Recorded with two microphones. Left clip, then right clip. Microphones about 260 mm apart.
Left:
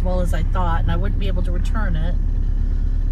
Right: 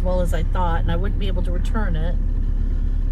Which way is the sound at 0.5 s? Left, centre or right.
Right.